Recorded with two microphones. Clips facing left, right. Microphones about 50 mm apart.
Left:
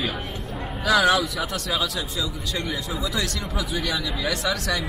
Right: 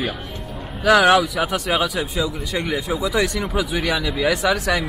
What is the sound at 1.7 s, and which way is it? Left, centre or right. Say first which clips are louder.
Speech: right 6 dB; right.